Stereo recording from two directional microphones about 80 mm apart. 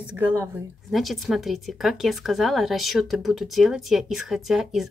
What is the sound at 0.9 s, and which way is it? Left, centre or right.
Speech, centre.